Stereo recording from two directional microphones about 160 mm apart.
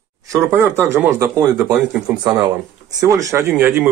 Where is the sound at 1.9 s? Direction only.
5° right (ahead or behind).